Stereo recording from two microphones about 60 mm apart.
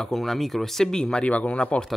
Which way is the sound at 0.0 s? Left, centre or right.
Centre.